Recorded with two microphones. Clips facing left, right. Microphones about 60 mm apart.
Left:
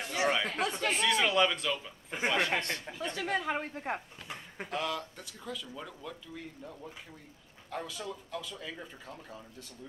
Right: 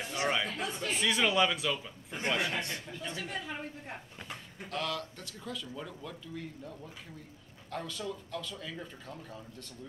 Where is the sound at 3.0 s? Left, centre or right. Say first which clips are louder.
Left 8 dB; left.